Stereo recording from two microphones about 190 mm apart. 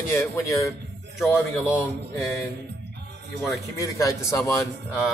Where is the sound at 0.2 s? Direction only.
15° left (ahead or behind).